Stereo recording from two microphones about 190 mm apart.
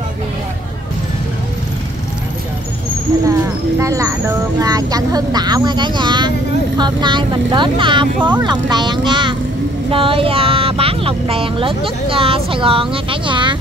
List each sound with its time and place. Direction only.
3.8 s speech: 15° right (ahead or behind)